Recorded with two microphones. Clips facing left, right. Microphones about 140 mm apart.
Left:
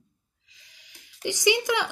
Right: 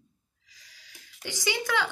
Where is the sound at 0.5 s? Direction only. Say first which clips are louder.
Right 1 dB; 20° left (ahead or behind).